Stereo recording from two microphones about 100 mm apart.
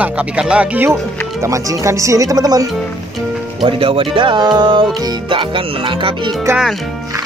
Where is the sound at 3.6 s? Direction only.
65° right (ahead or behind); by 5.2 s 40° right (ahead or behind).